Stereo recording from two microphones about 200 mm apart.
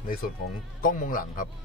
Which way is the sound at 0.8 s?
45° left (ahead or behind).